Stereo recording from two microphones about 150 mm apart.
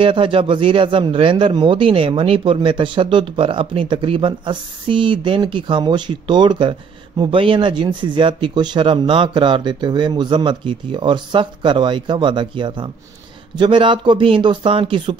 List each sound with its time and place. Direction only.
0.0 s a man's voice: 35° right (ahead or behind)